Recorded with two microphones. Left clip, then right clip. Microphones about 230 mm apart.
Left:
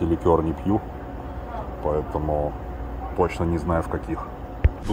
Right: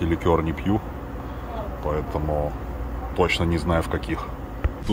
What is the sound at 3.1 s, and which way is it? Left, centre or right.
Speech, right.